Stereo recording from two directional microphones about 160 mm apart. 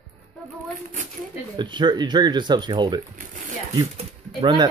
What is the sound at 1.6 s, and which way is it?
Speech, 30° right (ahead or behind).